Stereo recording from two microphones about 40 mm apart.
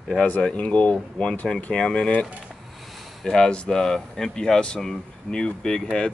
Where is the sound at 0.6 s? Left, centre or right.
Left.